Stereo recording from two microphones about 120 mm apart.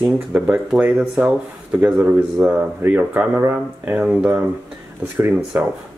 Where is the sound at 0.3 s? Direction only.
10° right (ahead or behind).